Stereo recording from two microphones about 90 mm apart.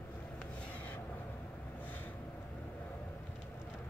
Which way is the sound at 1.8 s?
20° left (ahead or behind).